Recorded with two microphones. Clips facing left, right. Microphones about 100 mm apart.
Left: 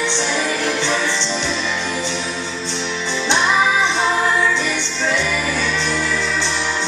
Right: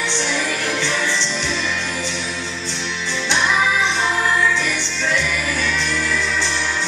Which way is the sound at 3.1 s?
20° left (ahead or behind).